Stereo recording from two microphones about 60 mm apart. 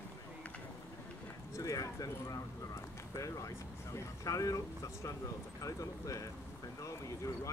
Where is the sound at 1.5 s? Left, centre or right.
Left.